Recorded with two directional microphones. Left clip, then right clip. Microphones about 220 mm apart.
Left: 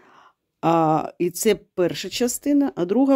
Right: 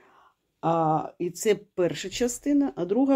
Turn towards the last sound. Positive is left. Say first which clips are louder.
# left 4 dB
turn(degrees=30)  # may be behind; listen again after turning